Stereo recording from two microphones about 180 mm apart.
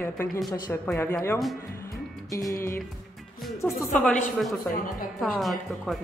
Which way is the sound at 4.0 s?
5° left (ahead or behind).